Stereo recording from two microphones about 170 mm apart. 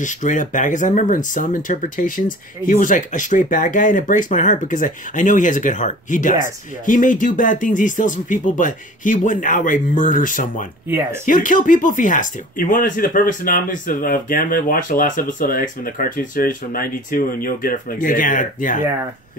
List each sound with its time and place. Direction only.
0.0 s speech: 50° left (ahead or behind)